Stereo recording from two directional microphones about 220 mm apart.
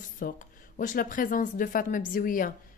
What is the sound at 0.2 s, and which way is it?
Speech, 40° left (ahead or behind).